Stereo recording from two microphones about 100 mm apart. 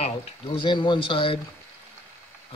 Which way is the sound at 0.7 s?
50° left (ahead or behind).